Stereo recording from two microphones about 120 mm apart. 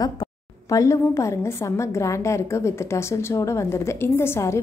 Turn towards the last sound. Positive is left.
turn(degrees=20)  # may be behind; listen again after turning